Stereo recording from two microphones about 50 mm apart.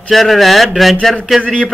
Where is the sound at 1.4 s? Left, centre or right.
Centre.